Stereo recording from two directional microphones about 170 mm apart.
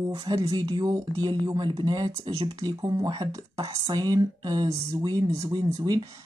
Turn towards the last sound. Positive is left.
turn(degrees=-25)  # may be behind; listen again after turning